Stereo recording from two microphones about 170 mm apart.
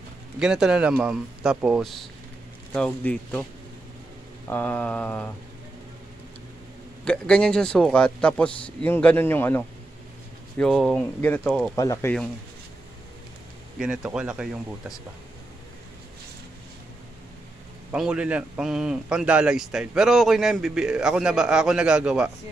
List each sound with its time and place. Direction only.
0.4 s a man's voice: 5° right (ahead or behind)
2.7 s a man's voice: 5° left (ahead or behind)
4.5 s a man's voice: 10° left (ahead or behind)
7.1 s a man's voice: 5° left (ahead or behind)
11.7 s speech: 20° left (ahead or behind)
13.7 s a man's voice: 5° right (ahead or behind)
17.9 s a man's voice: 5° right (ahead or behind)